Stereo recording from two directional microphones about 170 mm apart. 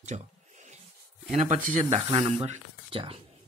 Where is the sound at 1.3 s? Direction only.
45° right (ahead or behind).